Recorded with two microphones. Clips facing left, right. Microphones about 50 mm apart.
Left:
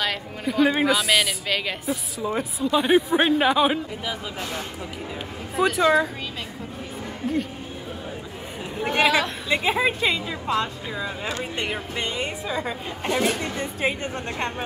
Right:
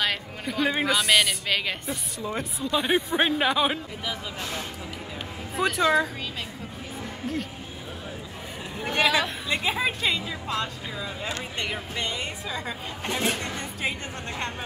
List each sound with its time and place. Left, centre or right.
0.0 s a woman's voice: centre
8.8 s speech: centre
13.6 s speech: left